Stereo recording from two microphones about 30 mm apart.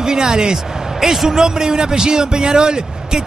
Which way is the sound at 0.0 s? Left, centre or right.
Right.